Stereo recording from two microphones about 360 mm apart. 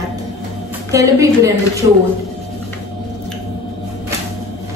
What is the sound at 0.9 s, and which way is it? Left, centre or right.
Speech, centre.